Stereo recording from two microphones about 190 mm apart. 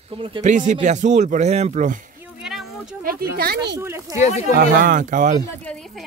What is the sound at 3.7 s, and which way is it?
Speech, 15° right (ahead or behind).